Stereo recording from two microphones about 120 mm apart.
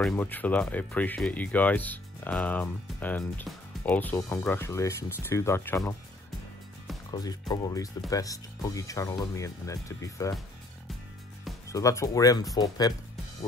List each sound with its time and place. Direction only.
0.1 s speech: 15° left (ahead or behind)
7.1 s speech: 35° left (ahead or behind)
11.7 s speech: 25° left (ahead or behind)